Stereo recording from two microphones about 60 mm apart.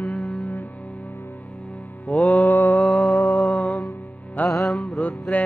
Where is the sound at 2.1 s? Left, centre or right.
Left.